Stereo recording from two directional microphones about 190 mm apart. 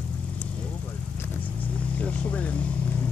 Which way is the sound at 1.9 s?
5° left (ahead or behind).